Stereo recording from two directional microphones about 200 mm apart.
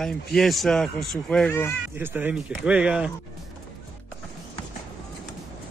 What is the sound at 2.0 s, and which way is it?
Speech, 10° right (ahead or behind).